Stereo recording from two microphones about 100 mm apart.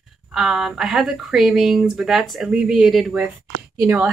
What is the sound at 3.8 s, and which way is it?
Speech, 20° right (ahead or behind).